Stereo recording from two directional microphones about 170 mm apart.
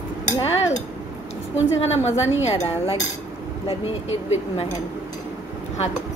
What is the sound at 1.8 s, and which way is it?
Speech, 40° left (ahead or behind).